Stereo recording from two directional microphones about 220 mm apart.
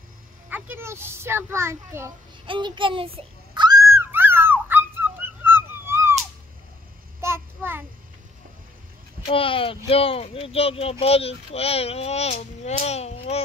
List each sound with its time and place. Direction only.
0.5 s a sound: 10° right (ahead or behind)
7.2 s child singing: 10° right (ahead or behind)
9.3 s speech: 25° left (ahead or behind)